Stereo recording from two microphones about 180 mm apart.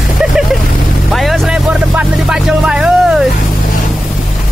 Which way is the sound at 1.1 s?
Centre (ahead or behind).